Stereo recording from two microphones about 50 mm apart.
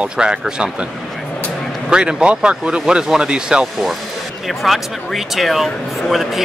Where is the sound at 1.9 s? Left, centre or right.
Centre.